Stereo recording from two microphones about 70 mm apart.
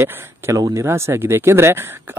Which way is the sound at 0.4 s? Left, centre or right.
Right.